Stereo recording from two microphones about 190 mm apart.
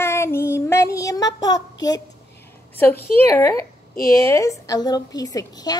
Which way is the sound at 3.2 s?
15° left (ahead or behind).